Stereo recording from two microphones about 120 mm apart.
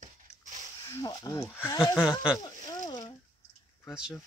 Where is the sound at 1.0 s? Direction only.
35° left (ahead or behind).